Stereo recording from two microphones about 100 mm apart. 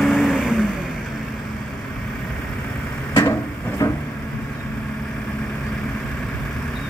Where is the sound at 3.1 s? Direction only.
30° left (ahead or behind).